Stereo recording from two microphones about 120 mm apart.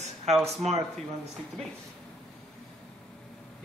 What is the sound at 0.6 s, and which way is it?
Speech, 65° right (ahead or behind).